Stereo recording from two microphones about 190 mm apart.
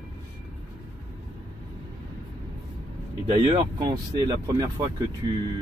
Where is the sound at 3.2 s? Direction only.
30° right (ahead or behind).